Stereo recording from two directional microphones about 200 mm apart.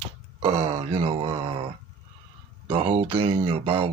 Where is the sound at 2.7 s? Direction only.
35° right (ahead or behind).